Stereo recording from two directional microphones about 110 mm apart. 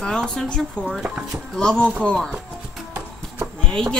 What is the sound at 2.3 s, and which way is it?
Music, 10° right (ahead or behind).